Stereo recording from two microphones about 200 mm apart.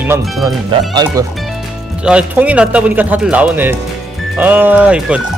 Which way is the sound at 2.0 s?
5° right (ahead or behind).